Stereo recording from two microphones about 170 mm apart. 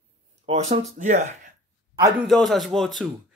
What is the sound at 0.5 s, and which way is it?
Speech, 40° right (ahead or behind).